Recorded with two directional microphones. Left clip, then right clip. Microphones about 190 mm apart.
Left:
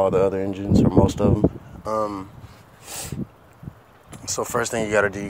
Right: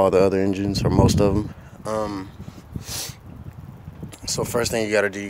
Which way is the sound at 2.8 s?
20° right (ahead or behind).